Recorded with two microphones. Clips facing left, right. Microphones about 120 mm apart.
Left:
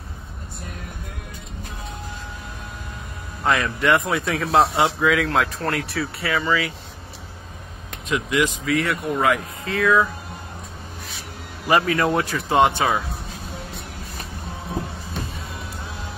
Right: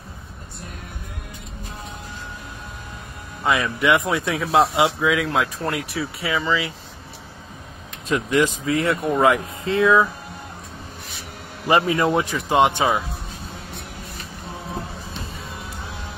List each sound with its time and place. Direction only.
3.4 s speech: 5° right (ahead or behind)
6.3 s speech: 20° right (ahead or behind)
8.1 s speech: 35° right (ahead or behind)
11.6 s speech: 25° right (ahead or behind)